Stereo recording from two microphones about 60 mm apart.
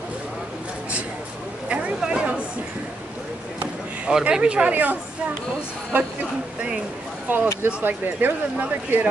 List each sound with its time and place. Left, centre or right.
1.7 s a sound: right
4.0 s speech: centre
5.9 s speech: right
7.3 s speech: right